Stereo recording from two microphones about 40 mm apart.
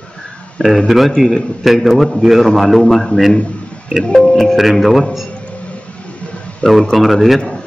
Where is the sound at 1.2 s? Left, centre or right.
Centre.